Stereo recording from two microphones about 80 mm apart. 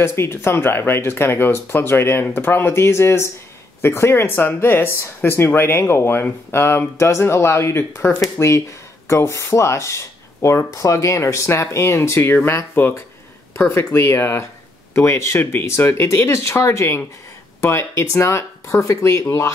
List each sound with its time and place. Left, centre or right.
0.0 s speech: left